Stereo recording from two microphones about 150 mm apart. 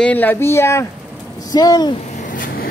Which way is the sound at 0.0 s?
10° left (ahead or behind).